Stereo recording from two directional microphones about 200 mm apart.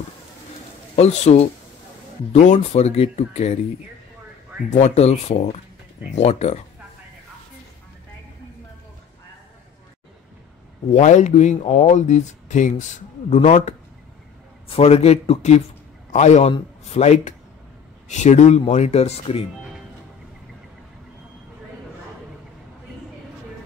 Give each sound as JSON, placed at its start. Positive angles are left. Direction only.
{"t": 0.9, "sound": "speech", "side_deg": 35}
{"t": 4.6, "sound": "speech", "side_deg": 35}
{"t": 10.9, "sound": "a man's voice", "side_deg": 35}